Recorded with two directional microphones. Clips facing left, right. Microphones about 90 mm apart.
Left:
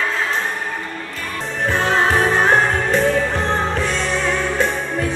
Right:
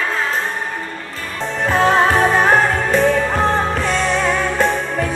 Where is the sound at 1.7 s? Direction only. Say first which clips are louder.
Right 4 dB; 45° right (ahead or behind).